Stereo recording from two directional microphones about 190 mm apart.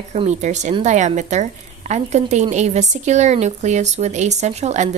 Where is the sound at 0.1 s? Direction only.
35° right (ahead or behind).